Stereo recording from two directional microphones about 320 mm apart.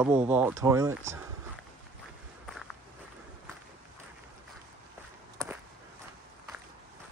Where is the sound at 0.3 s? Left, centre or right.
Centre.